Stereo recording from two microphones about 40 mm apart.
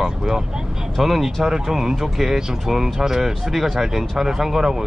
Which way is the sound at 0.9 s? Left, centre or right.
Centre.